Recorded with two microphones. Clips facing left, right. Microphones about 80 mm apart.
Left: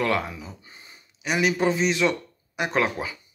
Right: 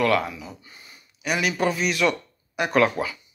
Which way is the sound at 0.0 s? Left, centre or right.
Left.